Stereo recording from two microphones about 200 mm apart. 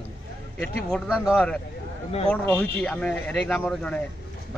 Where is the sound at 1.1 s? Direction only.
5° right (ahead or behind).